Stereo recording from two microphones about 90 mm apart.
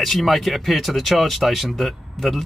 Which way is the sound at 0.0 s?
Centre (ahead or behind).